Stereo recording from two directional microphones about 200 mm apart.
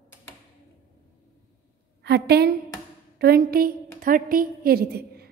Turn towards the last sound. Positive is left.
turn(degrees=-50)  # may be behind; listen again after turning